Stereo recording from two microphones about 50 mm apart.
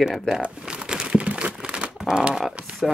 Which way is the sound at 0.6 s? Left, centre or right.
Centre.